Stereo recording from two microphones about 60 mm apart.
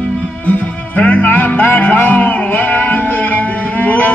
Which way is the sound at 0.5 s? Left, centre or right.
Left.